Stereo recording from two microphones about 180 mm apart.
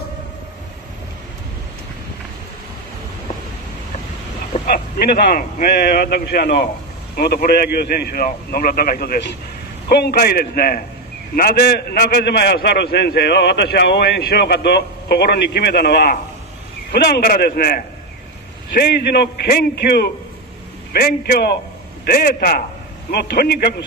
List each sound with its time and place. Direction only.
4.6 s a man's voice: 50° left (ahead or behind)